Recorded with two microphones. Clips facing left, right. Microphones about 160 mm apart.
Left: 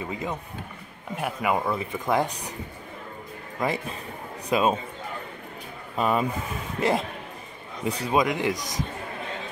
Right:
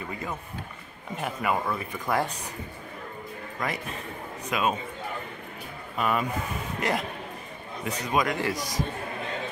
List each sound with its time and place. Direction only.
0.1 s a man's voice: 20° left (ahead or behind)
3.5 s speech: 25° left (ahead or behind)
5.9 s a man's voice: 30° left (ahead or behind)